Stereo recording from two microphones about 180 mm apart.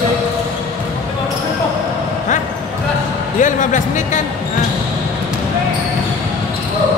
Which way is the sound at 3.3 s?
45° left (ahead or behind).